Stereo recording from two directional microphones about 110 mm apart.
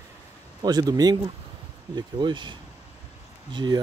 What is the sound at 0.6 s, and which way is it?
Speech, 35° right (ahead or behind).